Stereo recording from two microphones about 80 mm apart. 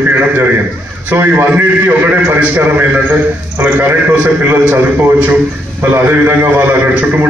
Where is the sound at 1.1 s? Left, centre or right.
Right.